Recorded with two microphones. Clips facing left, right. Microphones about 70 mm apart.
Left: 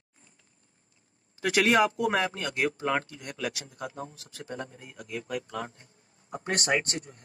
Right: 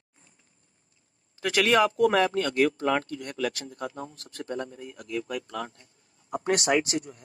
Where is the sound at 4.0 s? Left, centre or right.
Right.